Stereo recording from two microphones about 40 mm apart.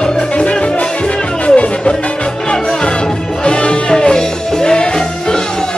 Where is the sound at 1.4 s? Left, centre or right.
Left.